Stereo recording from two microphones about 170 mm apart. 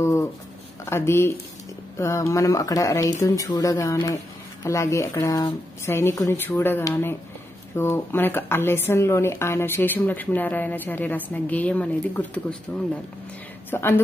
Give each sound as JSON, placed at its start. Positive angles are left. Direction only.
{"t": 0.0, "sound": "speech", "side_deg": 15}